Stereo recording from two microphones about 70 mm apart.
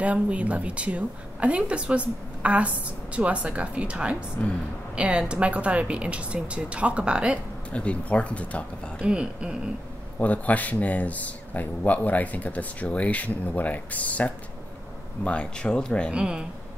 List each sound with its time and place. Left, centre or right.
0.0 s a woman's voice: centre
4.4 s speech: left
4.9 s speech: centre
7.7 s speech: centre
9.0 s speech: centre
10.1 s speech: left
16.1 s speech: centre